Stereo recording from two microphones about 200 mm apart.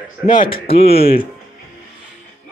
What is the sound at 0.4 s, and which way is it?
Speech, 25° left (ahead or behind).